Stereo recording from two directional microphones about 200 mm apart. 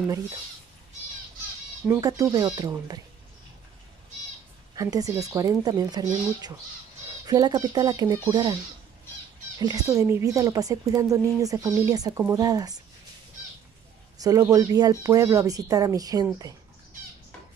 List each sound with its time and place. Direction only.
1.9 s speech: 15° right (ahead or behind)
4.7 s speech: 15° right (ahead or behind)
9.6 s speech: 20° right (ahead or behind)
14.2 s speech: 15° right (ahead or behind)